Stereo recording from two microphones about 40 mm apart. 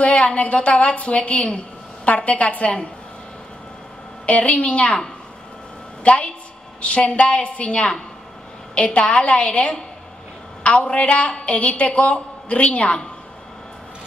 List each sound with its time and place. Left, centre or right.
0.2 s a woman's voice: left
4.3 s a woman's voice: left
6.0 s a woman's voice: left